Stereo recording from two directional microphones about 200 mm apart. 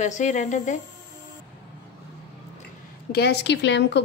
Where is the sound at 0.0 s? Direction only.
35° left (ahead or behind).